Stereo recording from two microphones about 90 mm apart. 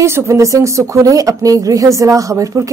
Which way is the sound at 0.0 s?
30° right (ahead or behind).